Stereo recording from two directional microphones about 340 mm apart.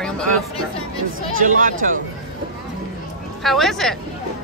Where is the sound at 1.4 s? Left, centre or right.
Right.